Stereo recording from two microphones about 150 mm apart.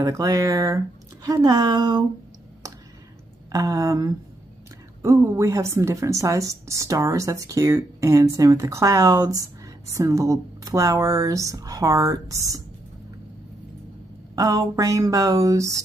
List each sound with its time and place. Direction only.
0.0 s a woman's voice: 20° right (ahead or behind)
3.5 s a woman's voice: 20° right (ahead or behind)
14.3 s a woman's voice: 25° right (ahead or behind)